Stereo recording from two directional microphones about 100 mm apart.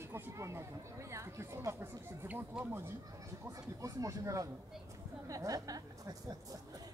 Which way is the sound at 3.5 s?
35° right (ahead or behind).